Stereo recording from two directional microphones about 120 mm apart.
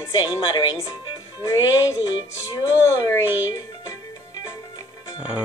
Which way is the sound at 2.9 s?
25° left (ahead or behind).